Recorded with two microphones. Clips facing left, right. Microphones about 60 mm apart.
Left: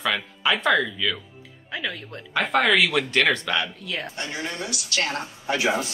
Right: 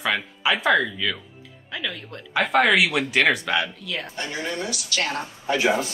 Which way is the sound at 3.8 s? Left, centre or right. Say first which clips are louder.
Even; left.